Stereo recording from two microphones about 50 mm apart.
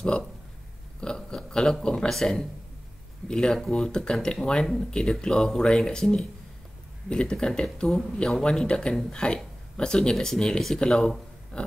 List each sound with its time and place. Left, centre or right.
1.0 s a sound: centre
2.0 s speech: centre
7.6 s speech: centre